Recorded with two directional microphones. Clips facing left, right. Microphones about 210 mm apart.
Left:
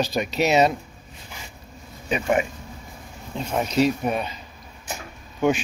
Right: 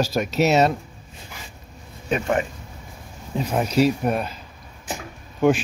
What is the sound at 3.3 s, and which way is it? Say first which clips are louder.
Speech: right 2 dB; 5° right (ahead or behind).